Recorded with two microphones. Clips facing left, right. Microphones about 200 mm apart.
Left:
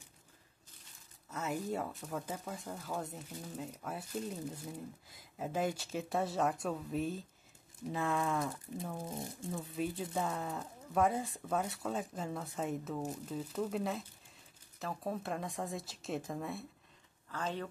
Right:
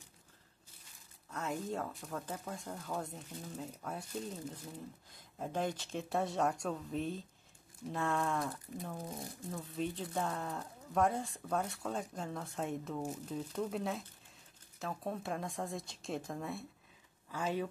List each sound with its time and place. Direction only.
1.3 s speech: 5° left (ahead or behind)
9.1 s speech: 25° left (ahead or behind)
9.5 s speech: 5° left (ahead or behind)
17.3 s speech: 10° right (ahead or behind)